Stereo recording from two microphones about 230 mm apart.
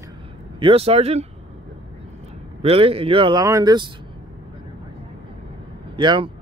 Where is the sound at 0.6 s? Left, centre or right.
Right.